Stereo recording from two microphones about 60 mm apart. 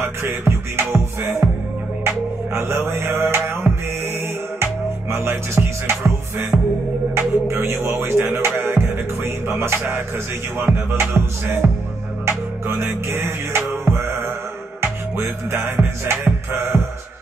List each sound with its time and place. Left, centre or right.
0.0 s music: right
5.1 s music: right